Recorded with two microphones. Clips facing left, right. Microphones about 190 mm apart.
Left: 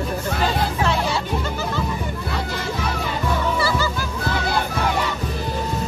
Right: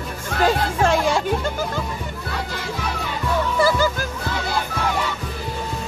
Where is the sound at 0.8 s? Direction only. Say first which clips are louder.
Right 5 dB; 50° right (ahead or behind).